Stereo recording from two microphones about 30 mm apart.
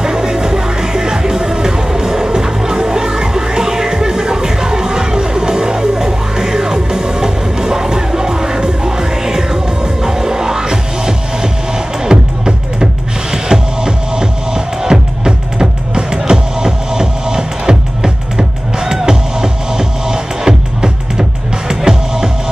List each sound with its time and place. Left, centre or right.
0.0 s music: right